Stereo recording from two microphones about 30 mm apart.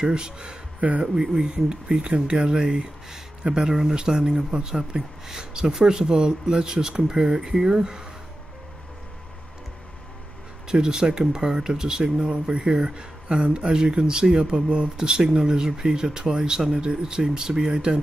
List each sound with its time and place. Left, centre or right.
0.0 s speech: right
0.7 s speech: right
1.0 s speech: right
10.7 s speech: right
15.0 s speech: right